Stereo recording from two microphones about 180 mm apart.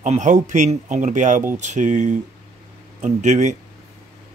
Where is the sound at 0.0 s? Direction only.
45° right (ahead or behind).